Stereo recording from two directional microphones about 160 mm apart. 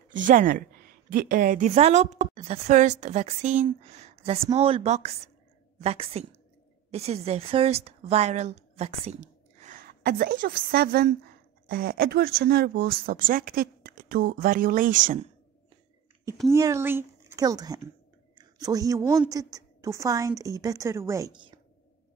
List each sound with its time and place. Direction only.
0.1 s a woman's voice: 55° right (ahead or behind)
1.7 s a woman's voice: 40° right (ahead or behind)
16.4 s a woman's voice: 20° right (ahead or behind)
18.3 s clicking: 25° right (ahead or behind)
19.3 s a woman's voice: 20° right (ahead or behind)
21.3 s a woman's voice: 30° right (ahead or behind)